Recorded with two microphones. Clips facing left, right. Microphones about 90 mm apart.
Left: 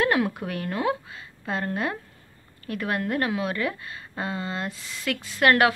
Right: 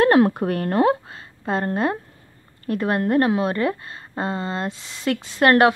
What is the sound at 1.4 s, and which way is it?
A woman's voice, 35° right (ahead or behind).